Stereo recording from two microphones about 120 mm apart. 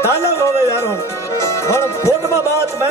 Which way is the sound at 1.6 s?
25° left (ahead or behind).